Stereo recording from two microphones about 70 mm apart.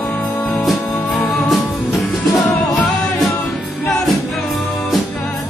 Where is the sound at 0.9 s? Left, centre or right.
Centre.